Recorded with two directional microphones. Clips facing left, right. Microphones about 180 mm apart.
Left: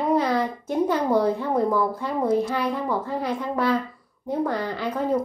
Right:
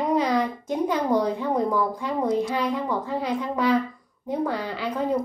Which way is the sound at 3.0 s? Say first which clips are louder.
Even; 15° right (ahead or behind).